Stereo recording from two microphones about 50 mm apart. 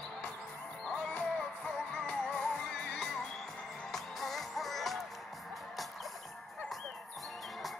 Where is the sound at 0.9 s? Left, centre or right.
Left.